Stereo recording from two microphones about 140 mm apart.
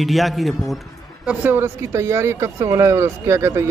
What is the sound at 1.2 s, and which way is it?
Speech, 15° right (ahead or behind).